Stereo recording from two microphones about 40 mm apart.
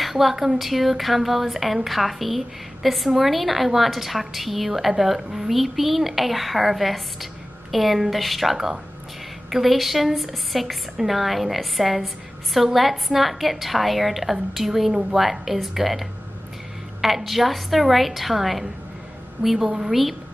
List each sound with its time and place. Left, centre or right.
0.0 s a woman's voice: centre